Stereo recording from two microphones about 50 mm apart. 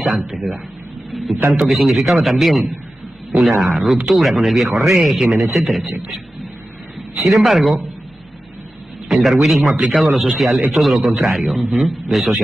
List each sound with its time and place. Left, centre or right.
0.2 s a man's voice: centre
9.1 s speech: centre